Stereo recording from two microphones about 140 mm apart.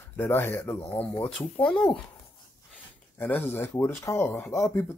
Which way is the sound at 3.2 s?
15° left (ahead or behind).